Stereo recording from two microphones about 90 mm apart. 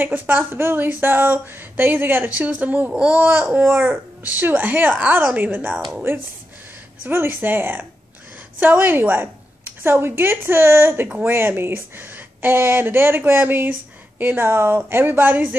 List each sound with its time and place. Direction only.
0.0 s speech: 20° right (ahead or behind)
7.1 s a woman's voice: 25° right (ahead or behind)